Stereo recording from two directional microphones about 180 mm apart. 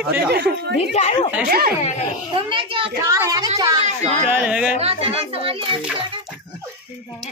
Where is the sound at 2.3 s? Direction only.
30° right (ahead or behind).